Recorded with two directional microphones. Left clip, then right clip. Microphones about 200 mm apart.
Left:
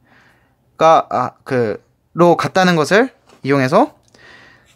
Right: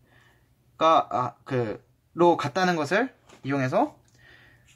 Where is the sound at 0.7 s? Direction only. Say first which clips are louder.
Left 9 dB; 55° left (ahead or behind).